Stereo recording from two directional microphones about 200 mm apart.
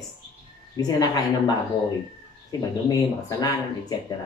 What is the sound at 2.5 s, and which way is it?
A woman's voice, 20° left (ahead or behind).